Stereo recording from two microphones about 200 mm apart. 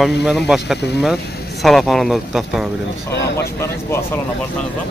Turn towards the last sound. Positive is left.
turn(degrees=15)  # may be behind; listen again after turning